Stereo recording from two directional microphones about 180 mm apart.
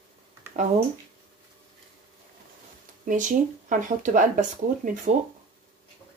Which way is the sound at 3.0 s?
45° right (ahead or behind).